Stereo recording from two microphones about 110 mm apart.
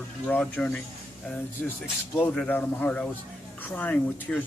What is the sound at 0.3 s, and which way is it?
Speech, 15° left (ahead or behind).